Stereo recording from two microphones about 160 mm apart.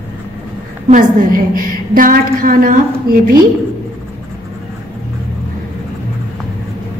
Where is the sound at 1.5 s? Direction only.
60° right (ahead or behind).